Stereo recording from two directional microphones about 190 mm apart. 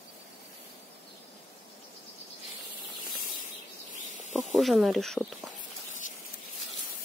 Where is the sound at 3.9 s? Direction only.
40° left (ahead or behind).